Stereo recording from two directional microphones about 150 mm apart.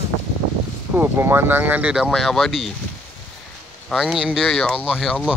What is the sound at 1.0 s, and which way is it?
Speech, 15° right (ahead or behind).